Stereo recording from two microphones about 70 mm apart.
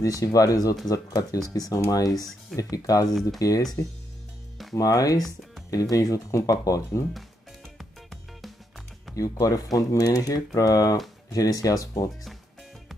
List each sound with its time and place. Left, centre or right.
0.0 s speech: left
4.7 s speech: left
9.1 s speech: left